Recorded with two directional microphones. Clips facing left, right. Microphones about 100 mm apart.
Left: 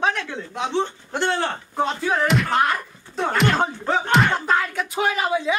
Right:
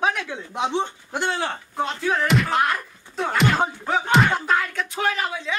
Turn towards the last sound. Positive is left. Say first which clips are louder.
# left 4 dB
turn(degrees=10)  # may be behind; listen again after turning